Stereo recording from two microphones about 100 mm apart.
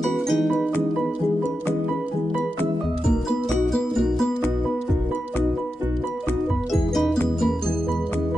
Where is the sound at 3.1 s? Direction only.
5° left (ahead or behind).